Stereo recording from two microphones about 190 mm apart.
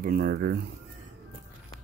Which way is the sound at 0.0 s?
50° right (ahead or behind).